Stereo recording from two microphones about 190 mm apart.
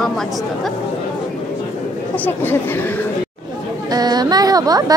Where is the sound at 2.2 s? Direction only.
10° left (ahead or behind).